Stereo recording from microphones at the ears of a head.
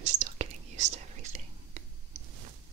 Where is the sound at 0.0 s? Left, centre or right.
Right.